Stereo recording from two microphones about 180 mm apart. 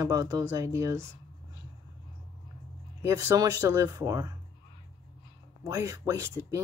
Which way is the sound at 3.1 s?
20° right (ahead or behind).